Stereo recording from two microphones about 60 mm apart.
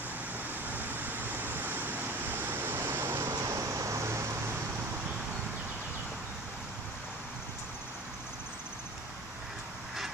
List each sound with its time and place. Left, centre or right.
0.8 s vehicle: right